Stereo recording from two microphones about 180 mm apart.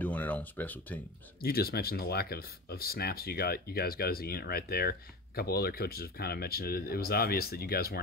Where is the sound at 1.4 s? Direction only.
55° left (ahead or behind).